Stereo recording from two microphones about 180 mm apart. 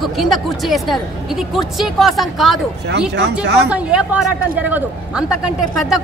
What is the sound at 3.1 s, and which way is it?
Speech, 70° right (ahead or behind).